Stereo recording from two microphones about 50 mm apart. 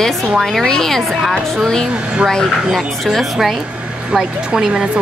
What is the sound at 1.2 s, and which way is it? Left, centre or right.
Speech, centre.